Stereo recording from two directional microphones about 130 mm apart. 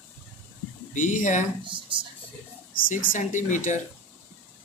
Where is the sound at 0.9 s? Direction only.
75° left (ahead or behind).